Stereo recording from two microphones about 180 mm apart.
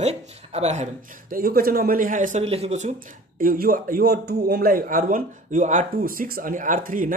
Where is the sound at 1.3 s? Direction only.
55° right (ahead or behind); by 2.9 s 40° right (ahead or behind).